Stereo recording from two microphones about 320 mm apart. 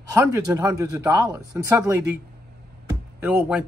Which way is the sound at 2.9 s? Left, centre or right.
Centre.